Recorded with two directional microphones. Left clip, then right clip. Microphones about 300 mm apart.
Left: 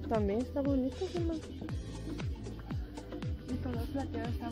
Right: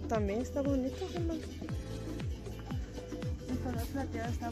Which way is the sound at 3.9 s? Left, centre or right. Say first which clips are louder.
Left 1 dB; centre.